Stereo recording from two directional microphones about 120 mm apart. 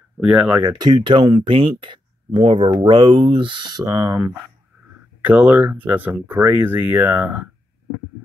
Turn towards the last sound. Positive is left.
turn(degrees=-15)  # may be behind; listen again after turning